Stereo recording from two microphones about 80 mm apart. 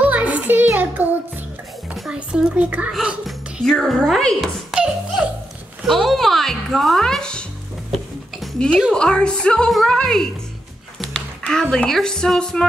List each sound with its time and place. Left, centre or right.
0.0 s child singing: centre
2.0 s speech: centre
2.9 s music: centre
3.6 s a woman's voice: centre
4.6 s music: centre
5.9 s a woman's voice: centre
8.9 s a woman's voice: centre
11.0 s a sound: centre
11.7 s a woman's voice: centre